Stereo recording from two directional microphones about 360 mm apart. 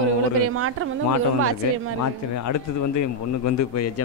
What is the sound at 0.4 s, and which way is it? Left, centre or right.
Speech, right.